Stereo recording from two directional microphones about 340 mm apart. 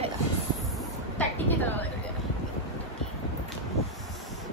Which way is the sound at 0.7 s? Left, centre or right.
Centre.